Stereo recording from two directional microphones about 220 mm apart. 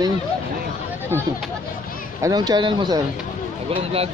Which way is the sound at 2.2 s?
15° right (ahead or behind).